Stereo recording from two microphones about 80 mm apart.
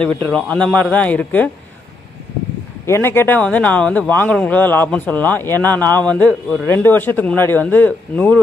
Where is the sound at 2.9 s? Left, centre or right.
Left.